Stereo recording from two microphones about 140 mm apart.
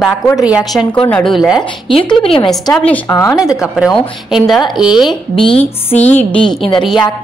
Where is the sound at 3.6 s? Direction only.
5° right (ahead or behind); by 6.2 s 10° left (ahead or behind).